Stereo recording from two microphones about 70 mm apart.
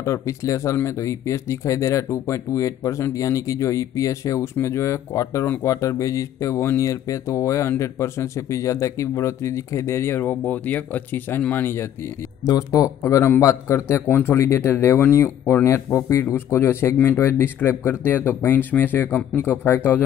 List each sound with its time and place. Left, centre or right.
0.0 s speech: left
12.4 s speech: left
13.0 s speech: left